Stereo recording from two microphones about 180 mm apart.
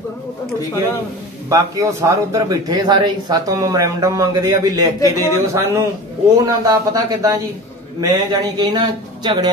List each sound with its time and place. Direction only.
1.5 s speech: 15° right (ahead or behind)